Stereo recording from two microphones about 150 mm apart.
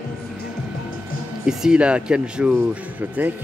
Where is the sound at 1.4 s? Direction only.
5° right (ahead or behind).